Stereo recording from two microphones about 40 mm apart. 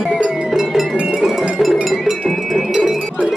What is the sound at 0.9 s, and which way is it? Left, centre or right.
Music, right.